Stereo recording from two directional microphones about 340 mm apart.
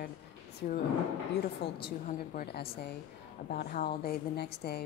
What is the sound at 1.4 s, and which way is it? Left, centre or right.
Speech, left.